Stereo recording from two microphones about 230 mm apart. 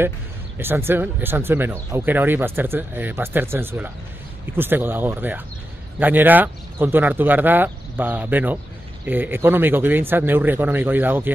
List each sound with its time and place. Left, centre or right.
0.6 s speech: centre